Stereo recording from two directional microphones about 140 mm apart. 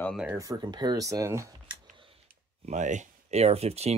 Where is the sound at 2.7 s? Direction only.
60° right (ahead or behind).